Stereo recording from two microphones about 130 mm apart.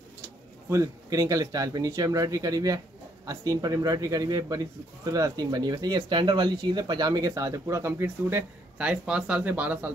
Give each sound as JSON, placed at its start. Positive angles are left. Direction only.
{"t": 0.7, "sound": "speech", "side_deg": -25}